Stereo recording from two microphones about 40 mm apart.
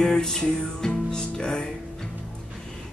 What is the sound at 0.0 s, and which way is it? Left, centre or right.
Music, centre.